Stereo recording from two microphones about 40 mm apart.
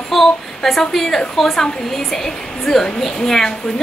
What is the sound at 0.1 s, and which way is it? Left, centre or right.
A woman's voice, centre.